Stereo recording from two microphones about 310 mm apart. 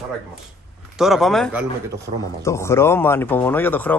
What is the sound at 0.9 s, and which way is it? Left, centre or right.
Speech, centre.